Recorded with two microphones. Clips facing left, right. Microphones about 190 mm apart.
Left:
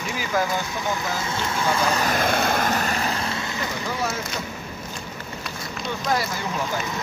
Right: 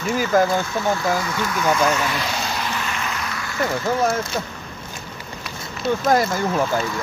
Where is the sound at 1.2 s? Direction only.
25° left (ahead or behind).